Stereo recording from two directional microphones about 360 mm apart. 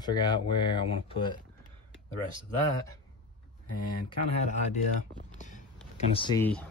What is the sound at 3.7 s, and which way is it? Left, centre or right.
Speech, left.